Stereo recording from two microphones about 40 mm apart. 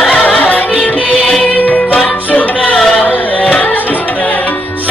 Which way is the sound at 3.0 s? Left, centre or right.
Left.